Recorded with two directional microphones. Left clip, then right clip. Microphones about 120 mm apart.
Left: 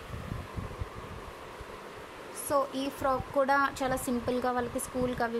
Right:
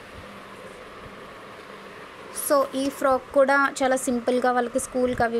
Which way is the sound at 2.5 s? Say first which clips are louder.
Right 8 dB; 40° right (ahead or behind).